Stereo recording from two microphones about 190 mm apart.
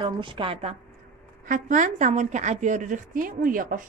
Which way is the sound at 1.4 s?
45° right (ahead or behind).